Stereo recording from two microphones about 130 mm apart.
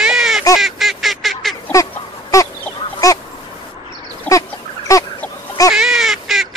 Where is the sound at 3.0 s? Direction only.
25° left (ahead or behind).